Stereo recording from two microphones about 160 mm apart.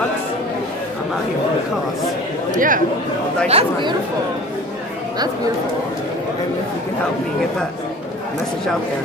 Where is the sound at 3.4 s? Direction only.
40° right (ahead or behind).